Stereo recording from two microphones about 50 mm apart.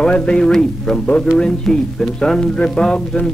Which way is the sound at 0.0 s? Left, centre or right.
Centre.